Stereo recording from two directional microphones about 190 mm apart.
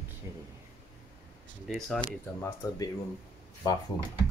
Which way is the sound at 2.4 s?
15° left (ahead or behind).